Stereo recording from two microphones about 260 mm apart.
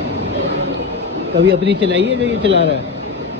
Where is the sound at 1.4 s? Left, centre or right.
Right.